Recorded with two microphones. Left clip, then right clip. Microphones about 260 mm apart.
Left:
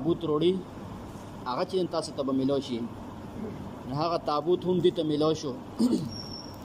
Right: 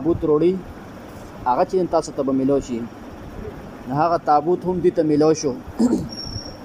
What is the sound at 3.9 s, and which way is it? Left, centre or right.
A man's voice, right.